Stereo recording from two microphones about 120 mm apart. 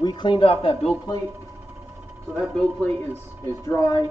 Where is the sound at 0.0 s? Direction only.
40° left (ahead or behind).